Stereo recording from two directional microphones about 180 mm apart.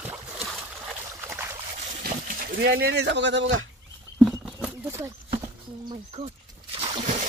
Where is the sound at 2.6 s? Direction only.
70° right (ahead or behind); by 3.6 s 85° right.